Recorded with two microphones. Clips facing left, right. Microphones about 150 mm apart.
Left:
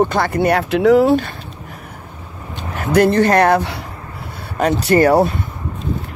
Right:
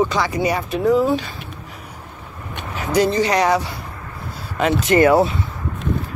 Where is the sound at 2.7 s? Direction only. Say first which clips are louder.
Left 4 dB; 55° left (ahead or behind).